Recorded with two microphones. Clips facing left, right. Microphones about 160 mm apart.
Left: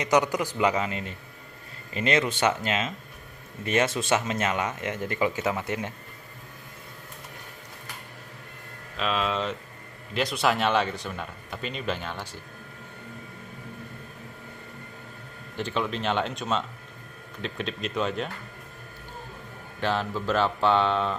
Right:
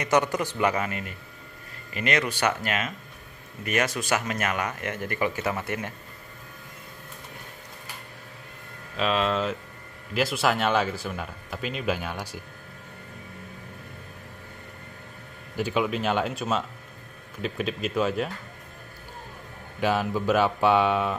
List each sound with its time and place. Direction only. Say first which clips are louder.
0.0 s a man's voice: even; 15° left (ahead or behind)
8.9 s speech: right 3 dB; centre (ahead or behind)
15.5 s speech: right 3 dB; 10° right (ahead or behind)
19.8 s speech: right 3 dB; 10° right (ahead or behind)